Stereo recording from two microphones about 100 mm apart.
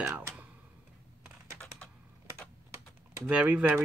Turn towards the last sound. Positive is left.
turn(degrees=-15)  # may be behind; listen again after turning